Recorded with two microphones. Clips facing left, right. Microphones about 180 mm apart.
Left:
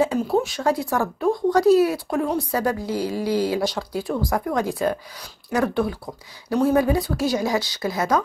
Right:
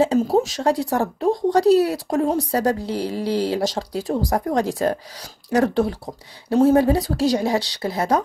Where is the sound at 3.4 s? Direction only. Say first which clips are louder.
Right 1 dB; 30° right (ahead or behind).